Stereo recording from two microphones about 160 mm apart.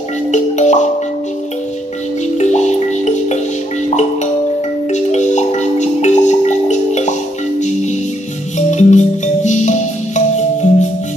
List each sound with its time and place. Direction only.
0.3 s music: 45° left (ahead or behind)
2.3 s music: 45° left (ahead or behind)
4.9 s music: 50° left (ahead or behind)
8.5 s music: 45° left (ahead or behind)